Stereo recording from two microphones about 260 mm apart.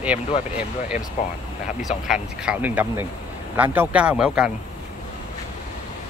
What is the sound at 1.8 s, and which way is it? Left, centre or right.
Speech, centre.